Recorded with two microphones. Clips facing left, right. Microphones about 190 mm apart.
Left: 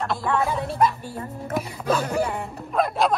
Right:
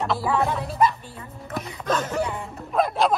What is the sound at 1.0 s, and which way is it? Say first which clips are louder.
Speech: left 7 dB; 45° left (ahead or behind).